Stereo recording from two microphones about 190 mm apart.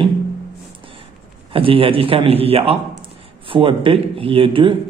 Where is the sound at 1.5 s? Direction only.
30° right (ahead or behind).